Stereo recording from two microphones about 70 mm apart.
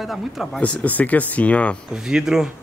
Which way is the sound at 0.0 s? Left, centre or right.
Centre.